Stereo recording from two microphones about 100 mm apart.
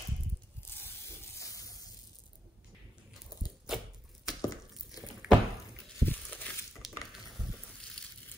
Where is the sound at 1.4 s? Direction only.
35° left (ahead or behind).